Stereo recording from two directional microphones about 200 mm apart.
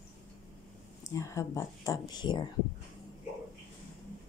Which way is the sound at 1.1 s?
15° left (ahead or behind).